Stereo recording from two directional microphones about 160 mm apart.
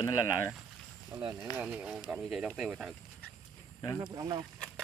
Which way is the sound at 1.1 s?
25° right (ahead or behind).